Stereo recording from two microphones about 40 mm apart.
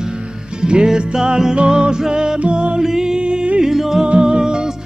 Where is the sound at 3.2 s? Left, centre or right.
Right.